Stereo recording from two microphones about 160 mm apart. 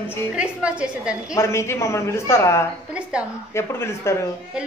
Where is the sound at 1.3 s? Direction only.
15° left (ahead or behind).